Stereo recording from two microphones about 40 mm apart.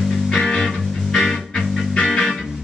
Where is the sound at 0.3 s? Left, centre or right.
Centre.